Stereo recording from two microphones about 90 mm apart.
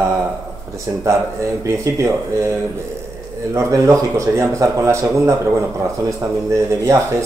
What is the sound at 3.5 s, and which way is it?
Speech, 35° right (ahead or behind).